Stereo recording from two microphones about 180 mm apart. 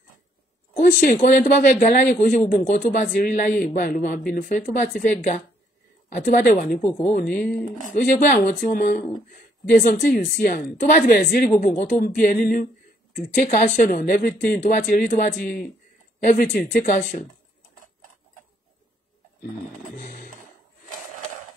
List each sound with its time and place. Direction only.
0.7 s speech: 50° left (ahead or behind)
20.0 s music: 50° left (ahead or behind)